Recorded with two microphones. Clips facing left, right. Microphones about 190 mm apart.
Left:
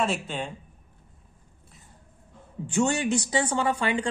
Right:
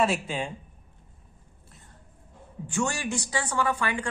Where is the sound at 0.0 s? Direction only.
5° right (ahead or behind).